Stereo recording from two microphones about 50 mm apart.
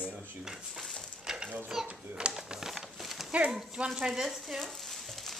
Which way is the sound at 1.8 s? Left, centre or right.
Right.